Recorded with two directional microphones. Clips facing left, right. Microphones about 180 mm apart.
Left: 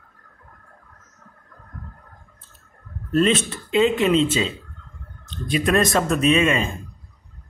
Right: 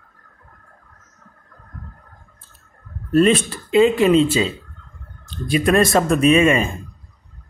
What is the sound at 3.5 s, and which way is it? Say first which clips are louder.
Speech: right 4 dB; 5° right (ahead or behind).